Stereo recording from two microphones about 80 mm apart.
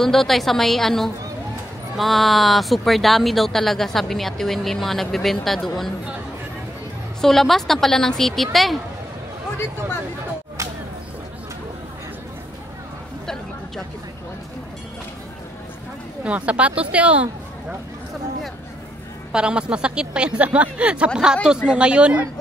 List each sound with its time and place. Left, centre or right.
0.0 s speech: centre
7.2 s speech: centre
16.3 s speech: centre
19.3 s speech: centre